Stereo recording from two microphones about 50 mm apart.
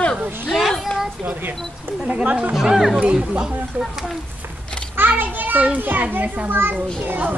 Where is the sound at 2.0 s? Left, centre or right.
Right.